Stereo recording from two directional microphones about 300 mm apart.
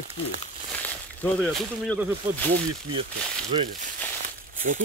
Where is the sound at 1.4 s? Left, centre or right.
Centre.